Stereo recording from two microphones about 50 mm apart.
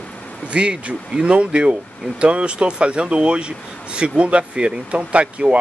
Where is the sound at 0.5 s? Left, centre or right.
Right.